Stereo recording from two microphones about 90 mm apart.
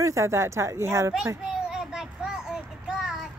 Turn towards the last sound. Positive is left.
turn(degrees=-5)  # may be behind; listen again after turning